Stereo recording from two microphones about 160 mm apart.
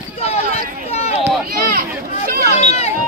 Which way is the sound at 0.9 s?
40° left (ahead or behind).